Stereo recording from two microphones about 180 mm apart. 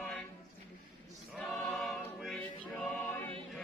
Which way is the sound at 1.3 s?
Centre (ahead or behind).